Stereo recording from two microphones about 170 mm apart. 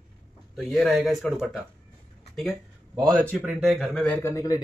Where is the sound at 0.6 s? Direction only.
Centre (ahead or behind).